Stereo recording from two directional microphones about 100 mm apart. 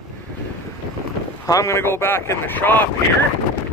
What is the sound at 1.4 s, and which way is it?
Speech, 30° left (ahead or behind).